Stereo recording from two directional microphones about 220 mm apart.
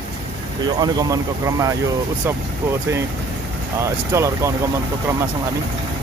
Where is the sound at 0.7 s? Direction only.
15° right (ahead or behind).